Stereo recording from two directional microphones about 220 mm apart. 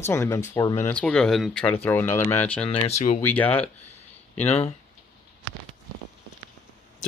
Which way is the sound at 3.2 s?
5° left (ahead or behind).